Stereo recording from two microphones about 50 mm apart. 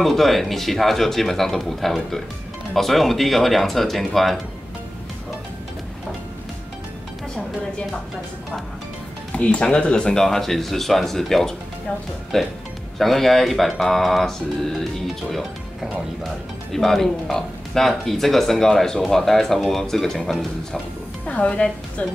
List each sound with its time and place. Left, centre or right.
0.0 s speech: centre
9.3 s speech: left; by 14.9 s centre
16.7 s speech: centre
21.3 s a woman's voice: left